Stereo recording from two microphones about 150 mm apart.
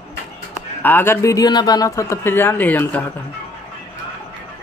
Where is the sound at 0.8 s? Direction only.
15° left (ahead or behind).